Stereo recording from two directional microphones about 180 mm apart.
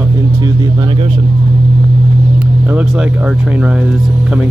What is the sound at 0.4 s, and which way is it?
Speech, 20° right (ahead or behind).